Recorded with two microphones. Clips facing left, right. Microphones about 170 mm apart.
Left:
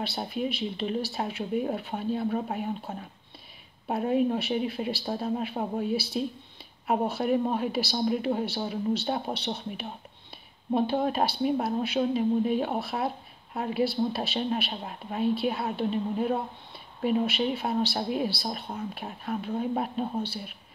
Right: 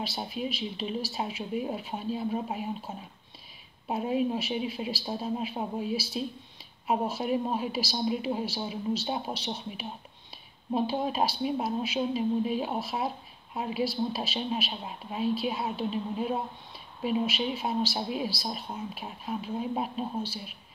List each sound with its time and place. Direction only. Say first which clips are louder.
0.0 s a woman's voice: left 3 dB; 60° left (ahead or behind)